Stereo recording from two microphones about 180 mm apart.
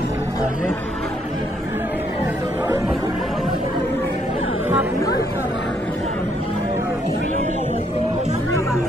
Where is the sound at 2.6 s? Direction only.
15° right (ahead or behind).